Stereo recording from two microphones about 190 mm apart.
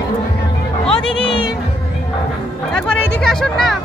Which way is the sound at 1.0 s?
25° left (ahead or behind).